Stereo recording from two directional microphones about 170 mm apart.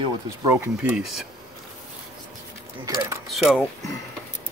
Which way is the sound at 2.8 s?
20° right (ahead or behind).